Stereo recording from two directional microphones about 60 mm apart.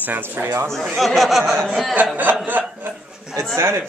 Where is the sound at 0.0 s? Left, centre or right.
Right.